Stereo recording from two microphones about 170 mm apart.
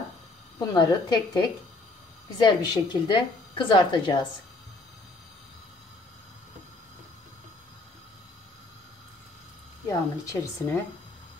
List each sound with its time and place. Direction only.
0.7 s a woman's voice: 25° left (ahead or behind)
9.8 s speech: 20° left (ahead or behind)